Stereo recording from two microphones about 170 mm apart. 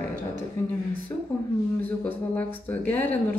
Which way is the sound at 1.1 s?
15° left (ahead or behind).